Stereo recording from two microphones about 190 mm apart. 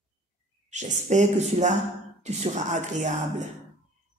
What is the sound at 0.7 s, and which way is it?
Speech, 40° right (ahead or behind).